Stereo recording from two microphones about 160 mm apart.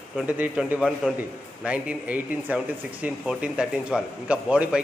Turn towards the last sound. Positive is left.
turn(degrees=-5)  # may be behind; listen again after turning